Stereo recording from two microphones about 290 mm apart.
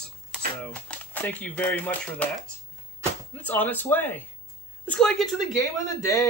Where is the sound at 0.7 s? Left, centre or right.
Centre.